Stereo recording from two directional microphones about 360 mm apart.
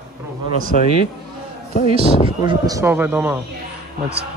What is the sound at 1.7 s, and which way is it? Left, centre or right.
Speech, centre.